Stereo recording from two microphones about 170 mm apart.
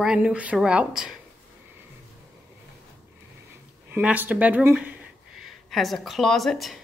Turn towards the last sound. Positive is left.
turn(degrees=0)  # may be behind; listen again after turning